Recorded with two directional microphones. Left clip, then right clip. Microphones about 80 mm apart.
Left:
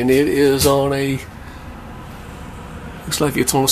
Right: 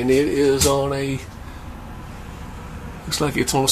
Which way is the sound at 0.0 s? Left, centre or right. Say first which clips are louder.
Left 3 dB; left.